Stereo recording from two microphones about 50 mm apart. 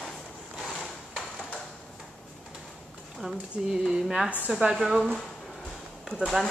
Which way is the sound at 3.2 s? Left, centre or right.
Centre.